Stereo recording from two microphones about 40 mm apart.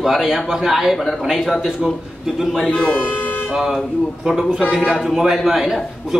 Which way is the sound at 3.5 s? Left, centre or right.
Centre.